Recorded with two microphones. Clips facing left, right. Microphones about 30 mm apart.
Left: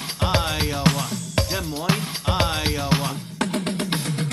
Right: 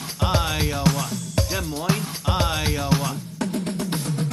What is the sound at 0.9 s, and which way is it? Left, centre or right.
Speech, left.